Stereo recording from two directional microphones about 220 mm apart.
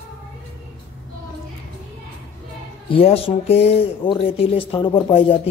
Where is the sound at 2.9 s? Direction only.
25° left (ahead or behind).